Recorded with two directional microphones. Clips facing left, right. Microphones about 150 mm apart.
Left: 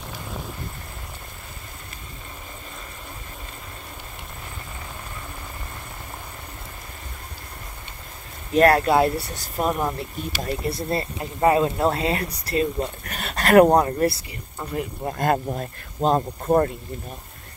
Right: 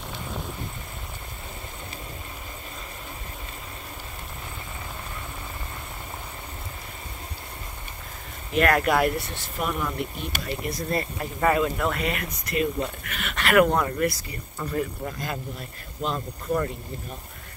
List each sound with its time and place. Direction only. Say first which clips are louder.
0.1 s vehicle: even; centre (ahead or behind)
8.5 s speech: left 5 dB; 30° left (ahead or behind)
10.3 s speech: left 6 dB; 45° right (ahead or behind)
10.7 s speech: left 2 dB; 25° left (ahead or behind)
15.0 s speech: left 10 dB; 55° left (ahead or behind)